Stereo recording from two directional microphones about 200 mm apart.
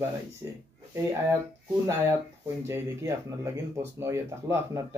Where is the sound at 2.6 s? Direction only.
15° right (ahead or behind).